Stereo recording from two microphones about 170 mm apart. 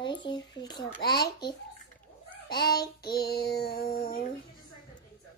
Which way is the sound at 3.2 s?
70° left (ahead or behind).